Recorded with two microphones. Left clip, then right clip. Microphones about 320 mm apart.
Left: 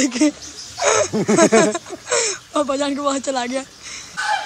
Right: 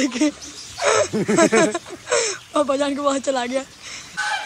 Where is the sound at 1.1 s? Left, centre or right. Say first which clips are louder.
Left 3 dB; left.